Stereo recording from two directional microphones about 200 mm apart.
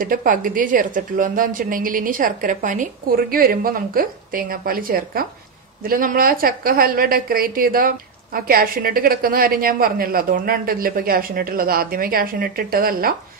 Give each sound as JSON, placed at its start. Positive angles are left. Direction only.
{"t": 0.0, "sound": "a woman's voice", "side_deg": -40}